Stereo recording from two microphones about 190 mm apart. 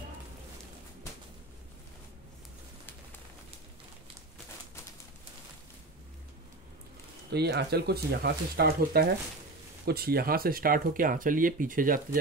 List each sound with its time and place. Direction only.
7.2 s speech: 60° right (ahead or behind)